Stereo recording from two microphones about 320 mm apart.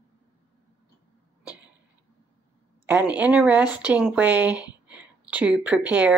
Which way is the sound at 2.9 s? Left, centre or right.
Centre.